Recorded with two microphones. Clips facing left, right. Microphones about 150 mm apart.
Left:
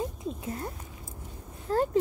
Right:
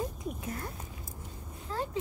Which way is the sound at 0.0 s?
25° left (ahead or behind).